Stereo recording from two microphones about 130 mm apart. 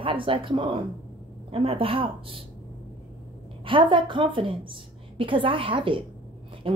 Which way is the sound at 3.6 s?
40° right (ahead or behind).